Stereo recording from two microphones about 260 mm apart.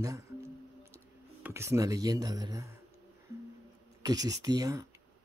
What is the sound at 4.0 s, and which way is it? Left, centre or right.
Speech, centre.